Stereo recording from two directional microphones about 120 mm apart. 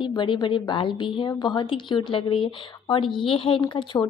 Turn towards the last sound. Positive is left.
turn(degrees=45)  # may be behind; listen again after turning